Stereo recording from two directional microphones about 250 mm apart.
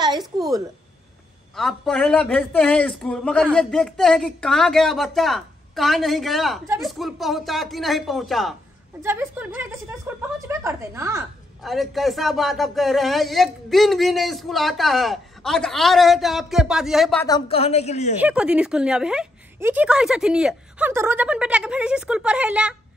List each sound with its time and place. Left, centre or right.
1.5 s a woman's voice: centre
11.6 s speech: centre
17.3 s a woman's voice: left
18.2 s speech: centre